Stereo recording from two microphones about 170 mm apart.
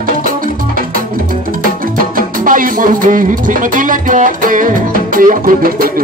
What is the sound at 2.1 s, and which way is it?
Music, 55° right (ahead or behind).